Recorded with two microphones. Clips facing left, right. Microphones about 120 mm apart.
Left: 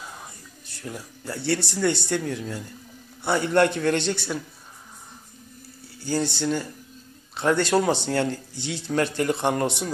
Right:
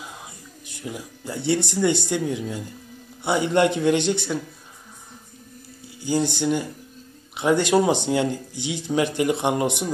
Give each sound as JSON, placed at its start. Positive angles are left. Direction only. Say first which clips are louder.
{"t": 0.7, "sound": "speech", "louder": "right 3 dB", "side_deg": -15}
{"t": 5.9, "sound": "speech", "louder": "right 3 dB", "side_deg": -15}